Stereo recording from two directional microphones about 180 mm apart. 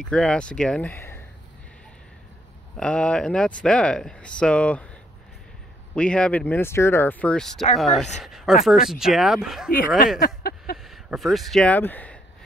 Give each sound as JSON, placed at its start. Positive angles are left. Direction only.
{"t": 0.0, "sound": "speech", "side_deg": 5}
{"t": 2.8, "sound": "speech", "side_deg": 5}
{"t": 5.9, "sound": "speech", "side_deg": 5}
{"t": 9.7, "sound": "speech", "side_deg": 50}
{"t": 10.1, "sound": "a sound", "side_deg": 55}
{"t": 10.8, "sound": "speech", "side_deg": 0}